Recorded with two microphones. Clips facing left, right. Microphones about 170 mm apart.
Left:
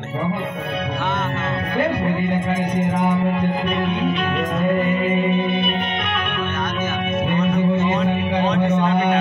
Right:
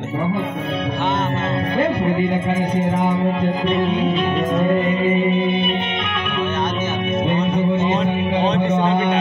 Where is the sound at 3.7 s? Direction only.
25° right (ahead or behind).